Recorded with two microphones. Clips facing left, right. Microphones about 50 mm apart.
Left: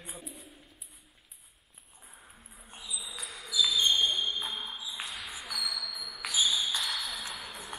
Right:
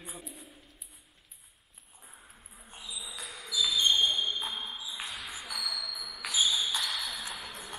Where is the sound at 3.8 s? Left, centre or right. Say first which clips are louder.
Right 4 dB; right.